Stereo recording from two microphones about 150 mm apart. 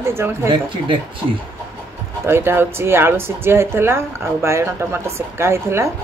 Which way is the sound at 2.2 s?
15° right (ahead or behind).